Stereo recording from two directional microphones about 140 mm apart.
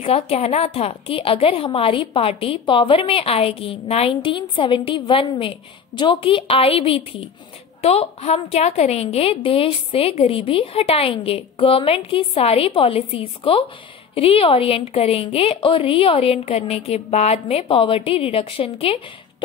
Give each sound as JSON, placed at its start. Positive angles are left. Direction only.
{"t": 0.0, "sound": "a woman's voice", "side_deg": 45}